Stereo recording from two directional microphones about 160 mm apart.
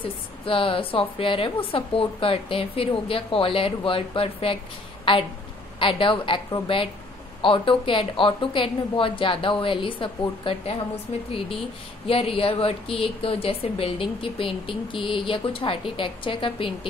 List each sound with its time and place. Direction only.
0.5 s speech: 35° left (ahead or behind)
5.8 s speech: 30° left (ahead or behind)
12.1 s speech: 35° left (ahead or behind)